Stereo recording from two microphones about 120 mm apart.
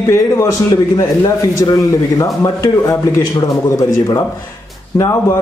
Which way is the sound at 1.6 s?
35° left (ahead or behind).